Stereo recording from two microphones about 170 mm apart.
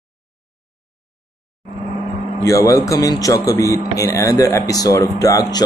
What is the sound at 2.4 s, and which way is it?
A man's voice, 20° left (ahead or behind).